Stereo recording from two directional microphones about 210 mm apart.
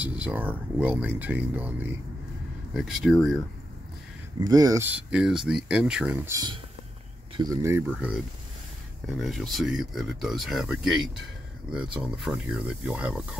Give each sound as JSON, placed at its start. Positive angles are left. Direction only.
{"t": 0.2, "sound": "speech", "side_deg": -10}
{"t": 4.4, "sound": "speech", "side_deg": -15}
{"t": 4.9, "sound": "speech", "side_deg": -5}